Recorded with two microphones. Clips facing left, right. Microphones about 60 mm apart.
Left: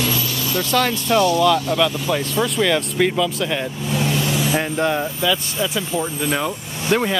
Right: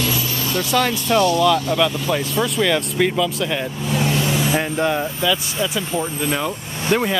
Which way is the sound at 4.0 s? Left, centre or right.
Right.